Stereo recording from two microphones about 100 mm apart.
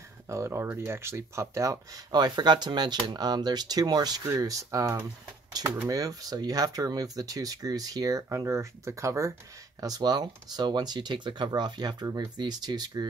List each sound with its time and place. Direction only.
0.3 s speech: 25° right (ahead or behind)
2.1 s speech: 45° right (ahead or behind)
4.2 s speech: 30° right (ahead or behind)